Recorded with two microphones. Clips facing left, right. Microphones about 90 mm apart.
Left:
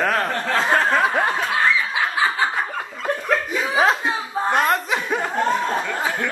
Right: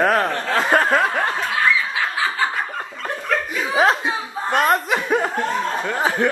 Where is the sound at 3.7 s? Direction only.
Centre (ahead or behind).